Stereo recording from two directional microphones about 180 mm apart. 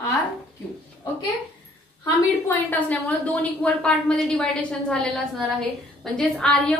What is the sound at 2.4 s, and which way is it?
A woman's voice, 10° left (ahead or behind).